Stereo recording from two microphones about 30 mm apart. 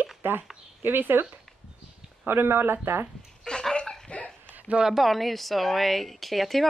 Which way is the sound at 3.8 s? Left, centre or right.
Centre.